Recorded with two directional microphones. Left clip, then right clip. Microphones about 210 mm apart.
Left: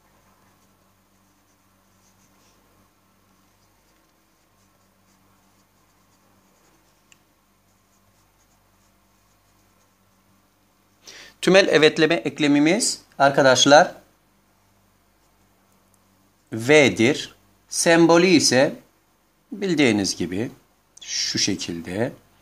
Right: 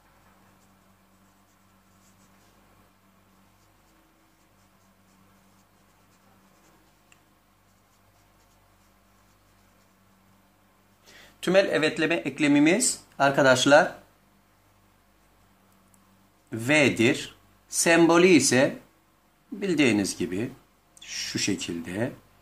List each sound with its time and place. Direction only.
11.1 s speech: 40° left (ahead or behind)
16.4 s speech: 35° left (ahead or behind)